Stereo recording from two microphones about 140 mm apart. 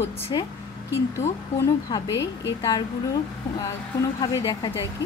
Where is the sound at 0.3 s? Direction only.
30° left (ahead or behind).